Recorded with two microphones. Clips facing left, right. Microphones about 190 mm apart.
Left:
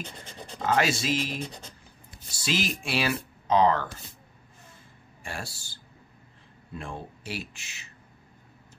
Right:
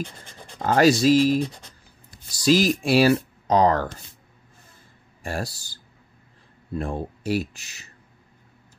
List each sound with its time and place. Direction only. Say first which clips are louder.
0.6 s speech: right 8 dB; 40° right (ahead or behind)
5.2 s speech: right 8 dB; 40° right (ahead or behind)